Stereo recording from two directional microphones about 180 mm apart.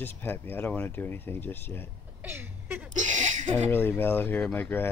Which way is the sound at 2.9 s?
40° right (ahead or behind).